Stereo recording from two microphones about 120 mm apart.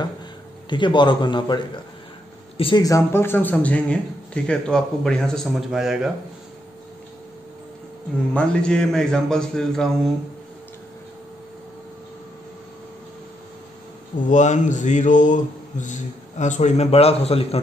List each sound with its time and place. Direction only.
0.7 s a man's voice: 40° left (ahead or behind)
2.8 s a man's voice: 25° left (ahead or behind); by 6.0 s 5° right (ahead or behind)
8.4 s a man's voice: 5° left (ahead or behind)
14.3 s speech: 85° left; by 17.6 s 55° left (ahead or behind)